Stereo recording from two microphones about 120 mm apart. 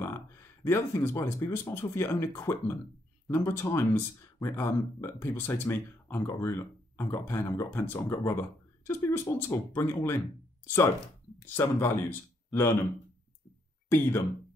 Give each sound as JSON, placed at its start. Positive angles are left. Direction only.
{"t": 0.0, "sound": "speech", "side_deg": 20}
{"t": 13.8, "sound": "speech", "side_deg": 20}